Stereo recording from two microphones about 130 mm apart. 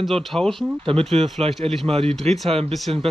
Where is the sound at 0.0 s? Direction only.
Centre (ahead or behind).